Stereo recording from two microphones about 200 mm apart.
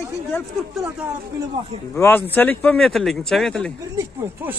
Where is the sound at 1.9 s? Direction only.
10° left (ahead or behind).